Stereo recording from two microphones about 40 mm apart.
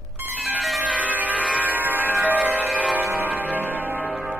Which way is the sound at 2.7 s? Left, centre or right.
Right.